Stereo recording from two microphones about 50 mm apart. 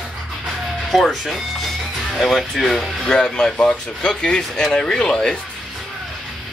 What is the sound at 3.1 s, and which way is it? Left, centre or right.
Speech, centre.